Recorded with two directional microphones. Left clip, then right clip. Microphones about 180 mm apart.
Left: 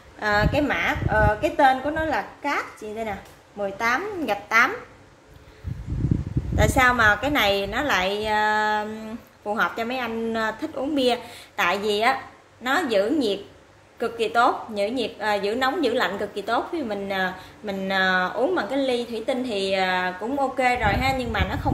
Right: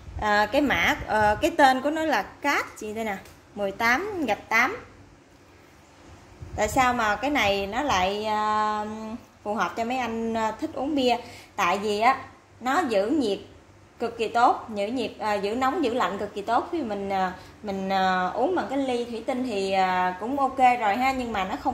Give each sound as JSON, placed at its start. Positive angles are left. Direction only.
{"t": 0.2, "sound": "a woman's voice", "side_deg": -15}
{"t": 0.5, "sound": "a woman's voice", "side_deg": -30}
{"t": 4.3, "sound": "a woman's voice", "side_deg": -15}
{"t": 6.5, "sound": "a woman's voice", "side_deg": 0}